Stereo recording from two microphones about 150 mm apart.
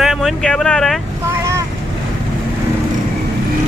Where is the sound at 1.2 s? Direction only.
20° right (ahead or behind).